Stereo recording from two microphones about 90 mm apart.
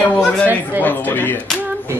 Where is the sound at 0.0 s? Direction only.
15° left (ahead or behind).